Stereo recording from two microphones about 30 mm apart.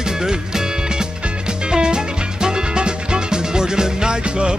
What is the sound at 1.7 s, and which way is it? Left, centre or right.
Music, right.